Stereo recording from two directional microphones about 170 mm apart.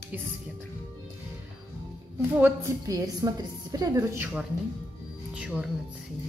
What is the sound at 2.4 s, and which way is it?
A woman's voice, 20° right (ahead or behind).